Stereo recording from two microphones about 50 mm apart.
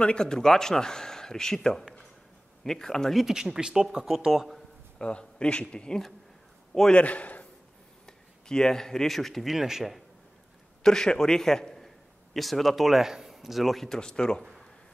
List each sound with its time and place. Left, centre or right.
0.0 s a man's voice: centre
3.2 s speech: centre
4.9 s a man's voice: centre
7.0 s a man's voice: left
8.5 s speech: centre
10.8 s a man's voice: centre
13.9 s a man's voice: centre